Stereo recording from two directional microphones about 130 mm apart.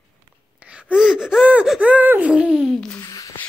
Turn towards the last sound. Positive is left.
turn(degrees=25)  # may be behind; listen again after turning